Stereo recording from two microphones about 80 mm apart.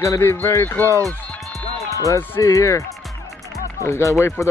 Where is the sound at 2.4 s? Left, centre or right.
Left.